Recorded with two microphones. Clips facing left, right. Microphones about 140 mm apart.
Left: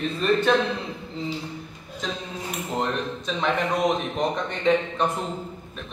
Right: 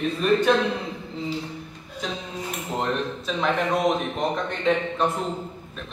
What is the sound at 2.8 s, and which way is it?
A man's voice, centre (ahead or behind).